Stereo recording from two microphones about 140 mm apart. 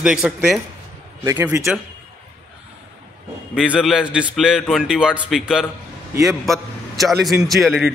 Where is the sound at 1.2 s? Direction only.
20° right (ahead or behind).